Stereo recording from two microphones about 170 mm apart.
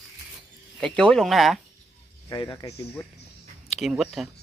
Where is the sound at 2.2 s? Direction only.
15° left (ahead or behind).